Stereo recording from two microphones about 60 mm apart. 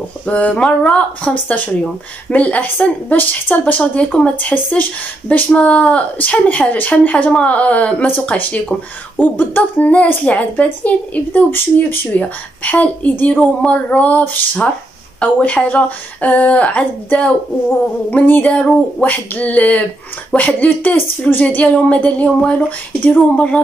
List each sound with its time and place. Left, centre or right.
0.3 s speech: centre
11.3 s speech: left
12.2 s speech: left
18.2 s speech: left